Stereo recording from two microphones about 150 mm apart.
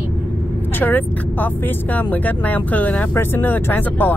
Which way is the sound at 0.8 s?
10° left (ahead or behind).